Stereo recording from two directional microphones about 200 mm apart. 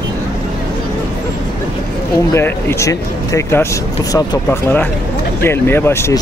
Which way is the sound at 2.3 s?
10° left (ahead or behind).